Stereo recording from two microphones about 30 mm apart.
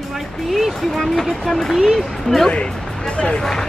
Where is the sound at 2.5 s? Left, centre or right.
Left.